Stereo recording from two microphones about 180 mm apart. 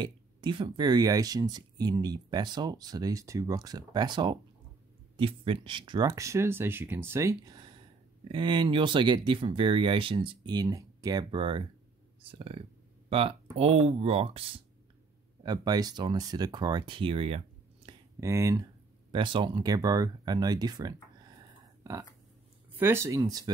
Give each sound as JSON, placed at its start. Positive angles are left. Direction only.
{"t": 0.0, "sound": "speech", "side_deg": -25}
{"t": 17.8, "sound": "a sound", "side_deg": -30}
{"t": 18.2, "sound": "speech", "side_deg": -15}